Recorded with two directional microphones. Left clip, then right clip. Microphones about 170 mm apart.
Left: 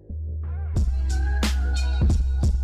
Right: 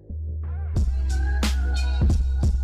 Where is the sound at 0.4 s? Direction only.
Centre (ahead or behind).